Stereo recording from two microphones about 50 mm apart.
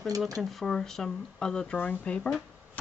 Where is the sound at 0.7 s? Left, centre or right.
Centre.